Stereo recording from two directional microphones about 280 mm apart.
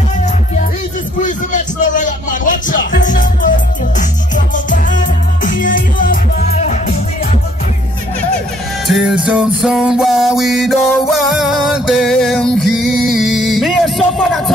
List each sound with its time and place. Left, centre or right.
1.2 s music: left
4.6 s music: left
8.8 s music: centre